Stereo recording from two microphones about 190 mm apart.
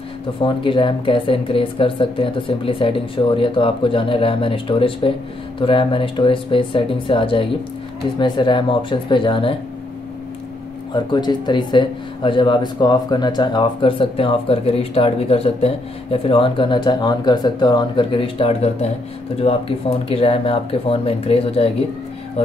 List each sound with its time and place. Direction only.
0.4 s speech: 25° left (ahead or behind)
11.1 s speech: 25° left (ahead or behind)